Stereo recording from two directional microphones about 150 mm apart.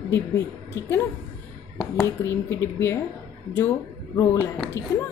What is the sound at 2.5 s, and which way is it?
Speech, 15° left (ahead or behind).